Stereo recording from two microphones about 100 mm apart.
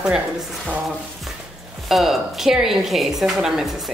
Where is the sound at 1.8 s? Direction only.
Centre (ahead or behind).